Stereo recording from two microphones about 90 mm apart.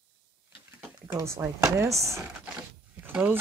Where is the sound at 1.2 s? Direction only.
30° right (ahead or behind).